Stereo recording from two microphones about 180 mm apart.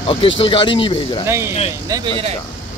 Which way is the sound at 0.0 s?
30° left (ahead or behind).